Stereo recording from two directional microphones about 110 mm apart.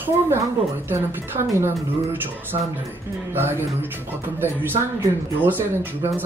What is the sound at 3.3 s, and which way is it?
Speech, 20° right (ahead or behind).